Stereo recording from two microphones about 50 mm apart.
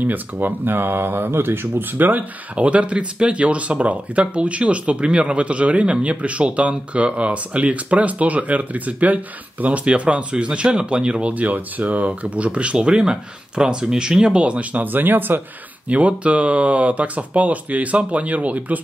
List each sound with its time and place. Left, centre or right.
0.0 s speech: right
2.5 s speech: right
11.3 s speech: right
15.9 s speech: right